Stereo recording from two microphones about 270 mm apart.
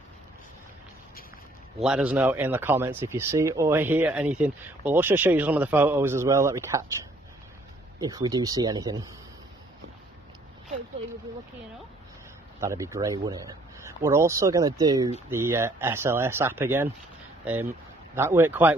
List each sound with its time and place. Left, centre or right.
1.8 s speech: centre
8.0 s speech: centre
12.5 s speech: centre
18.1 s speech: centre